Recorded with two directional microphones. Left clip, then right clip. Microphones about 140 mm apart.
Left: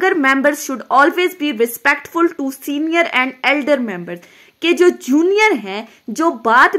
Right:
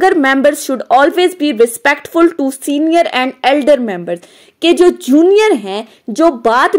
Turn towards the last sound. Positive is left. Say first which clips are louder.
# right 2 dB
turn(degrees=-30)  # may be behind; listen again after turning